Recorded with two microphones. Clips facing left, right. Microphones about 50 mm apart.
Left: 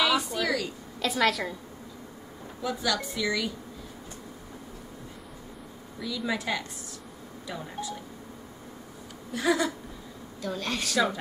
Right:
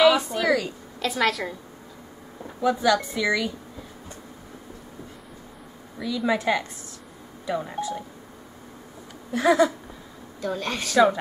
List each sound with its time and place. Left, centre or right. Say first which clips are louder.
0.0 s a sound: right 7 dB; centre
0.9 s a woman's voice: right 2 dB; centre
2.6 s speech: right 8 dB; centre
5.9 s speech: right 6 dB; centre
9.3 s speech: right 7 dB; centre